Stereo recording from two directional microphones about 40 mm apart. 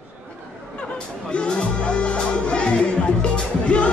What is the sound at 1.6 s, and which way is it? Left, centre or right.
Music, left.